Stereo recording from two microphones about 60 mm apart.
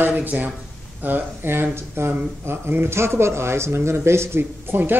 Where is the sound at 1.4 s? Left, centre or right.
Right.